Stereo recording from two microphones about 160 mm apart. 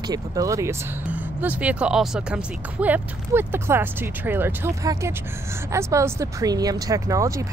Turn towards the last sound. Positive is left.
turn(degrees=-20)  # may be behind; listen again after turning